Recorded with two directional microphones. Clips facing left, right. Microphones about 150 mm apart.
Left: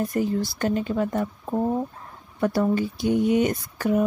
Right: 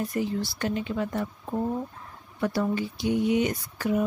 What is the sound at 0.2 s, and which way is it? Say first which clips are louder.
Speech: left 4 dB; 45° left (ahead or behind).